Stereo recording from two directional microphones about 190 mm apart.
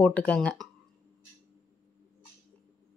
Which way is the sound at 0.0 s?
5° left (ahead or behind).